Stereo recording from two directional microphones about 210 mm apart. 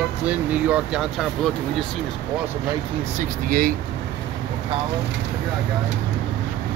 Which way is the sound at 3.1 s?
40° right (ahead or behind).